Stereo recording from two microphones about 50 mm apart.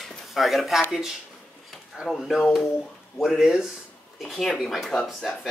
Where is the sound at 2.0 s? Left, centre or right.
Centre.